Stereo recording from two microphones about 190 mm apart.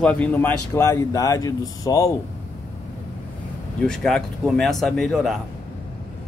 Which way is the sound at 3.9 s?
Centre (ahead or behind).